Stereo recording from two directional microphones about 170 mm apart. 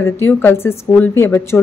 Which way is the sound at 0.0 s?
15° left (ahead or behind).